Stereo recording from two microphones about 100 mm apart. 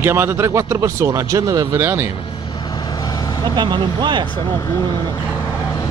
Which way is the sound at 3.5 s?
50° right (ahead or behind).